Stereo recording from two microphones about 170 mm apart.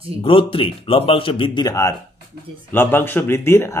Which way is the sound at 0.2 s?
30° left (ahead or behind).